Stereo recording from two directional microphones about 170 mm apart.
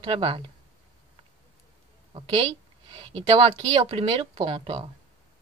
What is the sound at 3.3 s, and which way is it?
Speech, 35° right (ahead or behind).